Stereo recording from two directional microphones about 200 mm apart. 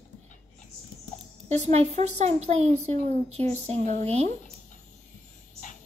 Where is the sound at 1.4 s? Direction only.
35° right (ahead or behind).